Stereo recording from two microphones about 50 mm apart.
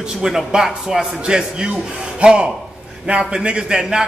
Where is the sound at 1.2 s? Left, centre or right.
Centre.